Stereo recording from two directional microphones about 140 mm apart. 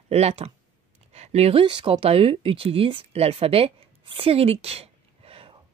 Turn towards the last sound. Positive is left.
turn(degrees=-40)  # may be behind; listen again after turning